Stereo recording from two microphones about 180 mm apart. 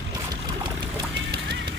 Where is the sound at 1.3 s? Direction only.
65° right (ahead or behind).